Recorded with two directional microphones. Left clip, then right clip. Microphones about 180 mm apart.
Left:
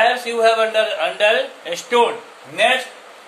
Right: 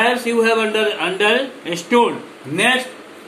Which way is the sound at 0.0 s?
15° left (ahead or behind).